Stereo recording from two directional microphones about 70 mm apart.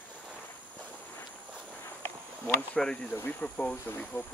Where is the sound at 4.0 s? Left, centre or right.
Left.